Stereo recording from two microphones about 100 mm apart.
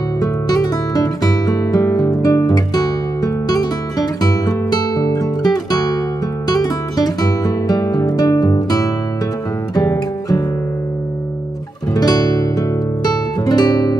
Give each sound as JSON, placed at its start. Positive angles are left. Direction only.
{"t": 0.2, "sound": "music", "side_deg": 40}
{"t": 11.9, "sound": "music", "side_deg": 40}